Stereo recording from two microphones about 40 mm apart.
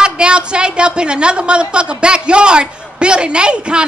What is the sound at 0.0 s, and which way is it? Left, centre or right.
A woman's voice, right.